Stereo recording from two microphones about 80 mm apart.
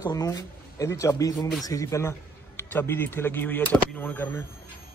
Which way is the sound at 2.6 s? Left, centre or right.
Left.